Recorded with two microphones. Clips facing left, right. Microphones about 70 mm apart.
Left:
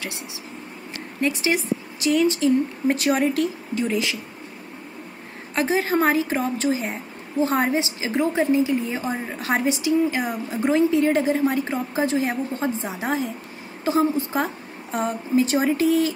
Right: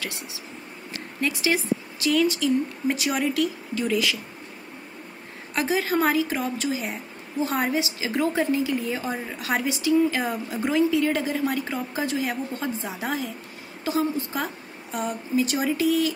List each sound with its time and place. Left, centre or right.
1.2 s a woman's voice: left
5.5 s a woman's voice: left